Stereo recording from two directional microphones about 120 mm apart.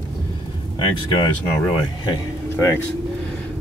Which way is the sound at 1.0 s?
35° left (ahead or behind).